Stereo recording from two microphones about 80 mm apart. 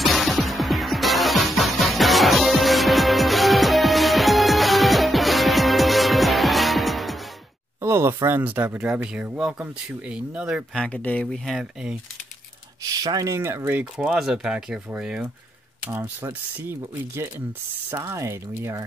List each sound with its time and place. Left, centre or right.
0.0 s music: centre
7.8 s speech: right
8.4 s speech: centre
10.8 s speech: centre
11.3 s speech: centre
12.8 s speech: right
13.9 s speech: centre
16.6 s speech: right